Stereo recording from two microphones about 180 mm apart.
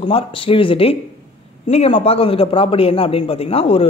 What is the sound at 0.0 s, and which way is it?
A man's voice, 30° left (ahead or behind).